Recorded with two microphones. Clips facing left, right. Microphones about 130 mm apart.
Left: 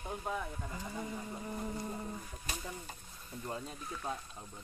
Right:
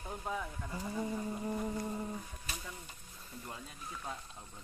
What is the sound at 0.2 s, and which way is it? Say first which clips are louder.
Speech: even; 5° left (ahead or behind).